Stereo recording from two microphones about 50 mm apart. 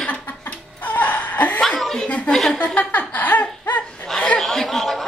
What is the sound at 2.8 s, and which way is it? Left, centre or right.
Laughter, left.